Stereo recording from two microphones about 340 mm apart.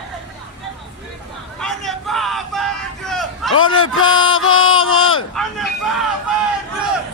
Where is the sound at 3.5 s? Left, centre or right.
Left.